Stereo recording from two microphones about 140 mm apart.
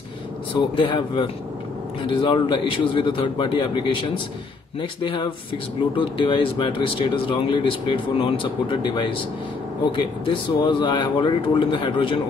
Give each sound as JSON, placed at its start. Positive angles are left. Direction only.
{"t": 0.7, "sound": "speech", "side_deg": 35}